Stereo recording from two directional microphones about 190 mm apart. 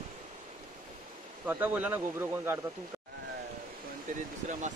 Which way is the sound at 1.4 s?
10° right (ahead or behind).